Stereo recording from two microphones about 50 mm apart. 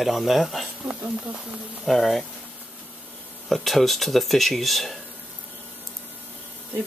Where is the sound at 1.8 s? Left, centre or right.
Centre.